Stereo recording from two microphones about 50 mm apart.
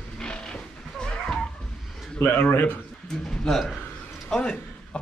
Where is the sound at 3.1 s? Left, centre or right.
Centre.